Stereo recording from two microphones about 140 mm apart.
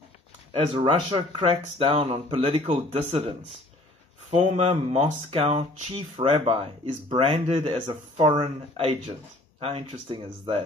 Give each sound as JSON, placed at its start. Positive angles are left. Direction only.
{"t": 0.7, "sound": "speech", "side_deg": -40}
{"t": 4.4, "sound": "speech", "side_deg": -50}